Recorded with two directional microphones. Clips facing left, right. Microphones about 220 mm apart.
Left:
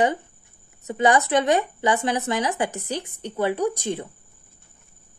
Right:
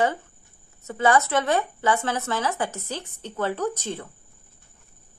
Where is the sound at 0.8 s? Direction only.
15° left (ahead or behind).